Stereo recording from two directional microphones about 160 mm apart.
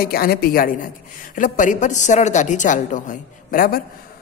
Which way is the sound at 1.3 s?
55° left (ahead or behind).